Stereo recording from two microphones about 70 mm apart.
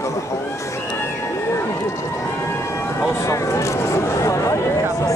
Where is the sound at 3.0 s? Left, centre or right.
Left.